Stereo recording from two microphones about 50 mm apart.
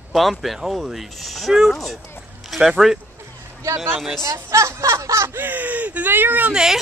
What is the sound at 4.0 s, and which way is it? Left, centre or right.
Speech, centre.